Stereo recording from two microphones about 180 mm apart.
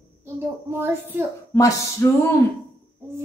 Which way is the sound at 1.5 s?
15° left (ahead or behind).